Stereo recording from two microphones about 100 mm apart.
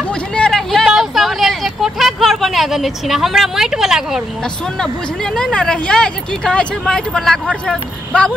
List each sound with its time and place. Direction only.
0.4 s vehicle: 5° left (ahead or behind)
4.7 s speech: 5° left (ahead or behind)